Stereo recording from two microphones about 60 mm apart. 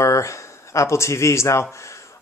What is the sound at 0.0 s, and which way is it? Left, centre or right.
Speech, left.